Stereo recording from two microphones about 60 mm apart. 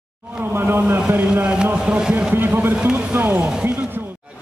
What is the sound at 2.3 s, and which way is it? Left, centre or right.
A man's voice, right.